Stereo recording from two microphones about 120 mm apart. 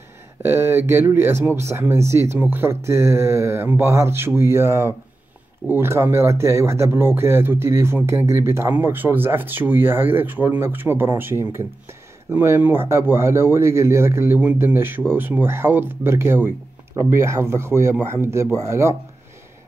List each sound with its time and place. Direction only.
0.4 s speech: 20° right (ahead or behind)